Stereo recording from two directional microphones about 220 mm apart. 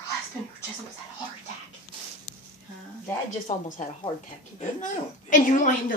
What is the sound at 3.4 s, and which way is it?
A woman's voice, 25° left (ahead or behind).